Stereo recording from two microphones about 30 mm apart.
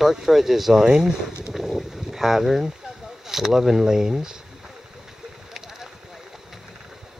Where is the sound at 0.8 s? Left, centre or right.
Right.